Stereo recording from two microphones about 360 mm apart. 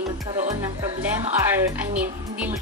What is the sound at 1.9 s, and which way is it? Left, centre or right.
Speech, centre.